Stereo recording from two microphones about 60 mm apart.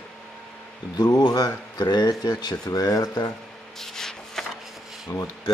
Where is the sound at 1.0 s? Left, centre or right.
Left.